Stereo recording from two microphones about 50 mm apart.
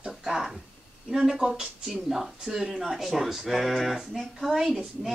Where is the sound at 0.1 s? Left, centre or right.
Centre.